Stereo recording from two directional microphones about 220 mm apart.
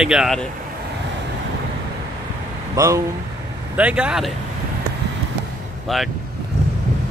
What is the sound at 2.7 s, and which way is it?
Speech, 15° right (ahead or behind).